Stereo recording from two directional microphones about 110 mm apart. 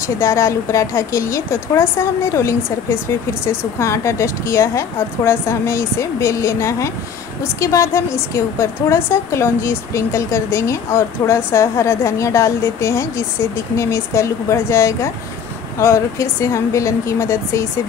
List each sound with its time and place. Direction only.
0.0 s a woman's voice: 25° left (ahead or behind)